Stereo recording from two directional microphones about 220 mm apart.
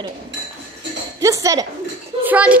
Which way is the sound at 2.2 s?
5° right (ahead or behind).